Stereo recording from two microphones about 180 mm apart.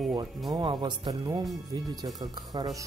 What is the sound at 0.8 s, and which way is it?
Speech, 25° right (ahead or behind).